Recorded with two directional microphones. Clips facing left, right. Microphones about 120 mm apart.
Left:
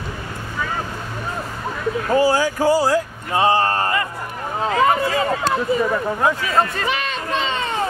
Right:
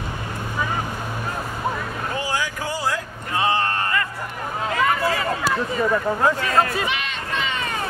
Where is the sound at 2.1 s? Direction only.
40° left (ahead or behind).